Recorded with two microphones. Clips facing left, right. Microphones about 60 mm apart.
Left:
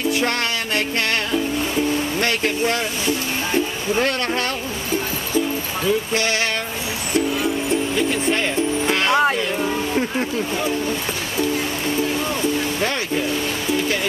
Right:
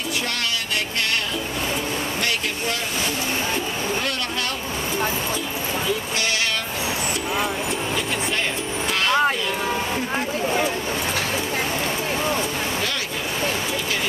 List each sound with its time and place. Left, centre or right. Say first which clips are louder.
8.8 s speech: left 1 dB; left